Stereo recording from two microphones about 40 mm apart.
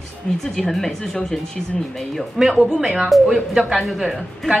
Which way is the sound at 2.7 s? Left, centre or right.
Centre.